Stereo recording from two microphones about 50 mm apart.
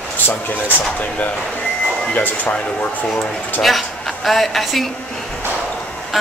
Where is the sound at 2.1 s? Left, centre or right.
Left.